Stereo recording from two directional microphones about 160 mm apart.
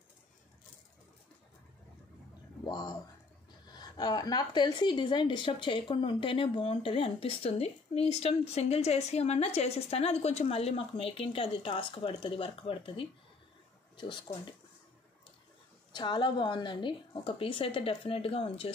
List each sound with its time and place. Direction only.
2.6 s a woman's voice: 25° left (ahead or behind)
15.9 s a woman's voice: 30° left (ahead or behind)